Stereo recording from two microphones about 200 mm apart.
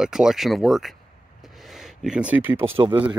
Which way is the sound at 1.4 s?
Centre (ahead or behind).